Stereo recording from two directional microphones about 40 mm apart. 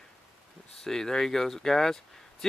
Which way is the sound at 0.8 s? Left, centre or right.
Centre.